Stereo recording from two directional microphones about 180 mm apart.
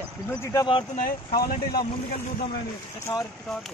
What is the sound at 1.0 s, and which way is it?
Speech, 55° left (ahead or behind).